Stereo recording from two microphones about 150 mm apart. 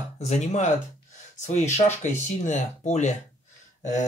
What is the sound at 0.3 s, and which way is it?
Speech, 50° left (ahead or behind).